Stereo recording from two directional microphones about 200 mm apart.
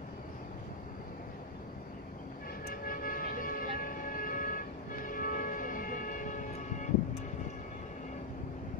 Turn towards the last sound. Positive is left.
turn(degrees=40)  # may be behind; listen again after turning